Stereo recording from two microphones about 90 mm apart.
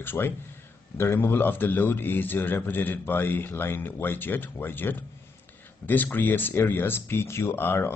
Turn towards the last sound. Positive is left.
turn(degrees=25)  # may be behind; listen again after turning